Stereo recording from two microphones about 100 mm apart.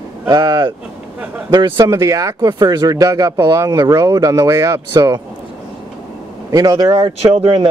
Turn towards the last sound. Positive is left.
turn(degrees=-75)  # may be behind; listen again after turning